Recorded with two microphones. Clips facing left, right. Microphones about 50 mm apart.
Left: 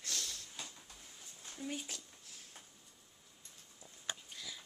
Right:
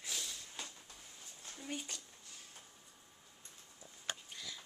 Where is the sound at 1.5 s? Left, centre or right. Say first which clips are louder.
Left 2 dB; centre.